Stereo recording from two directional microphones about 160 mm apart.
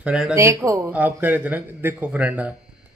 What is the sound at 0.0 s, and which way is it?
Speech, 5° right (ahead or behind).